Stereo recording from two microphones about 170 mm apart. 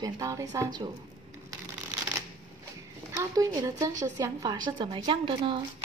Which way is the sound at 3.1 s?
20° right (ahead or behind).